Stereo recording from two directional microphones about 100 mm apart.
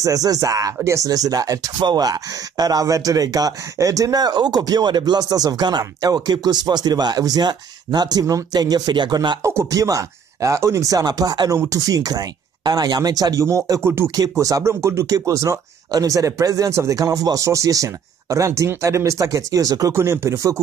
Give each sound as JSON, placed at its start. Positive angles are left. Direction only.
{"t": 0.0, "sound": "speech", "side_deg": -35}
{"t": 9.4, "sound": "speech", "side_deg": -30}